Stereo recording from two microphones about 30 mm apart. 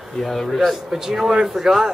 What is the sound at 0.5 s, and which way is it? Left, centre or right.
A man's voice, centre.